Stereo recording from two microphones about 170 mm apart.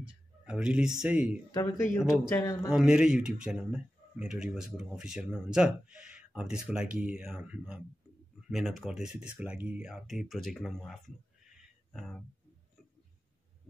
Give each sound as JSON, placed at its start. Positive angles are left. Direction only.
{"t": 0.5, "sound": "speech", "side_deg": -5}
{"t": 1.5, "sound": "speech", "side_deg": 20}
{"t": 2.7, "sound": "speech", "side_deg": -5}